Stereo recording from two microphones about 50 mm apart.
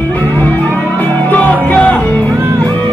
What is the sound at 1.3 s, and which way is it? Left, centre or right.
Music, left.